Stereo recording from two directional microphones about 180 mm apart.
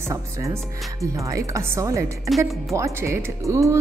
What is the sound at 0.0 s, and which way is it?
A woman's voice, 15° right (ahead or behind).